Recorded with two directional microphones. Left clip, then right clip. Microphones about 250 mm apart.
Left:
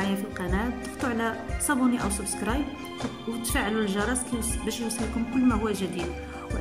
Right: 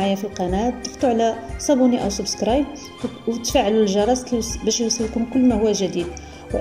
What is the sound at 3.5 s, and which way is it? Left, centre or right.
Speech, centre.